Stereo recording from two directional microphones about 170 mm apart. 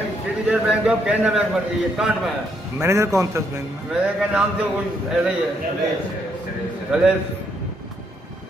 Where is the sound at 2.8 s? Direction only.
15° right (ahead or behind).